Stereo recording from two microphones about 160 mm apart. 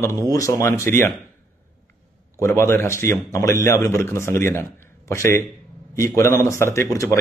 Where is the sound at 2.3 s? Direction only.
15° left (ahead or behind).